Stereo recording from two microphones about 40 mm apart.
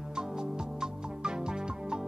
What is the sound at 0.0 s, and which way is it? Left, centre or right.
Music, centre.